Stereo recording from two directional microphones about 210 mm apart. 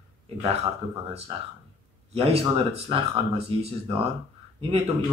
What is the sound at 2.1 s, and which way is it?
Speech, 30° right (ahead or behind).